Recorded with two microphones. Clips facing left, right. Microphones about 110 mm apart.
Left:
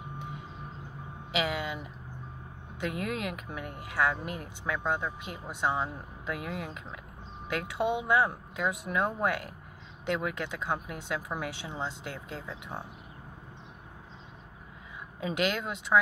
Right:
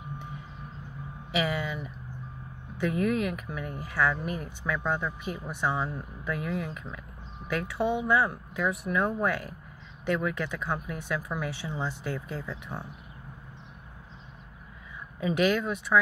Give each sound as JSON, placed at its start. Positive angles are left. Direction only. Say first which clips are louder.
{"t": 1.3, "sound": "a sound", "louder": "right 2 dB", "side_deg": 20}
{"t": 2.8, "sound": "speech", "louder": "right 6 dB", "side_deg": 20}
{"t": 15.1, "sound": "speech", "louder": "right 5 dB", "side_deg": 20}